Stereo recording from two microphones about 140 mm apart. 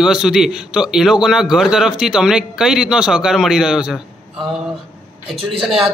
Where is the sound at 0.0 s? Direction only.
5° right (ahead or behind).